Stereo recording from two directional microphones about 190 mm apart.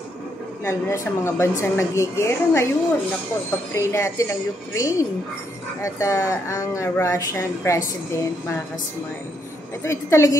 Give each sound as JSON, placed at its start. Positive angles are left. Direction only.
{"t": 0.7, "sound": "speech", "side_deg": 15}
{"t": 3.7, "sound": "speech", "side_deg": 15}
{"t": 9.8, "sound": "speech", "side_deg": 15}